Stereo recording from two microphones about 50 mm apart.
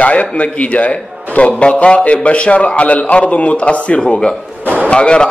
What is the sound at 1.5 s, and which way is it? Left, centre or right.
A man's voice, centre.